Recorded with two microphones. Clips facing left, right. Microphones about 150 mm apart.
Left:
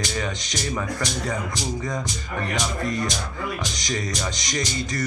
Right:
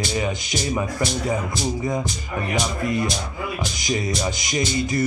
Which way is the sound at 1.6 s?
25° right (ahead or behind).